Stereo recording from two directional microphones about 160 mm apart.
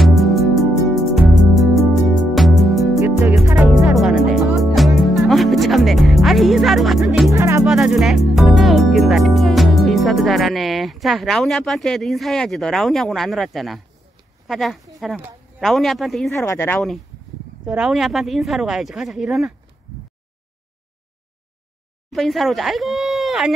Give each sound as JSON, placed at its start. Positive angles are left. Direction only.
{"t": 0.0, "sound": "music", "side_deg": 0}
{"t": 7.3, "sound": "music", "side_deg": -15}
{"t": 7.6, "sound": "music", "side_deg": -5}
{"t": 14.5, "sound": "speech", "side_deg": 0}
{"t": 16.3, "sound": "speech", "side_deg": 15}
{"t": 17.6, "sound": "speech", "side_deg": -5}
{"t": 22.1, "sound": "speech", "side_deg": 0}